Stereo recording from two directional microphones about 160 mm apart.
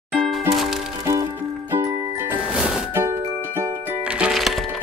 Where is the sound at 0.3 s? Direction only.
Centre (ahead or behind).